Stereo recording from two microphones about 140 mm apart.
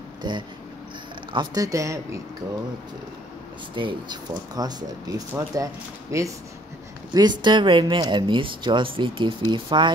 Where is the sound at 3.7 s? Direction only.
35° right (ahead or behind).